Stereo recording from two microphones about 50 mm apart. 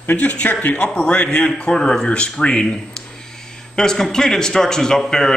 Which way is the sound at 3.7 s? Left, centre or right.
Centre.